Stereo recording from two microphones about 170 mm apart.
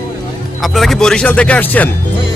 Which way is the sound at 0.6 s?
Centre (ahead or behind).